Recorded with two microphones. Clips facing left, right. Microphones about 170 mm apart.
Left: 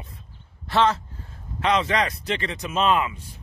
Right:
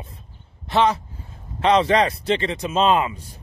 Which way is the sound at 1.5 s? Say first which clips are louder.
Right 5 dB; 30° right (ahead or behind).